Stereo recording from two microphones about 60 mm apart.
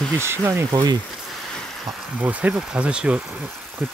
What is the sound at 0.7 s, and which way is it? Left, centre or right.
Speech, right.